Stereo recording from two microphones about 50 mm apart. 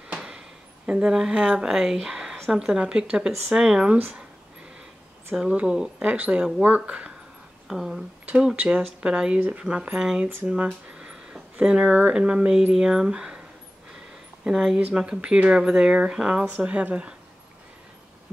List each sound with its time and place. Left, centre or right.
0.2 s a sound: centre
0.8 s speech: centre
5.3 s speech: centre
7.6 s speech: centre
8.5 s speech: right
14.5 s speech: centre
14.8 s speech: centre
16.4 s speech: right